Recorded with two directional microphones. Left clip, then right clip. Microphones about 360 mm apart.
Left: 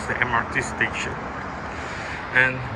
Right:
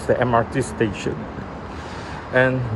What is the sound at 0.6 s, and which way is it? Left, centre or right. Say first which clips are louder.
Speech: even; right.